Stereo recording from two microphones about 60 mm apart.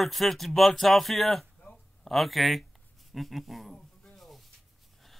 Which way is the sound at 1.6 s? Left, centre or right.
Centre.